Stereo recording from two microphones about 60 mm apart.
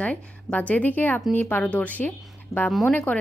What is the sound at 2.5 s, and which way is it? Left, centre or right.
Speech, left.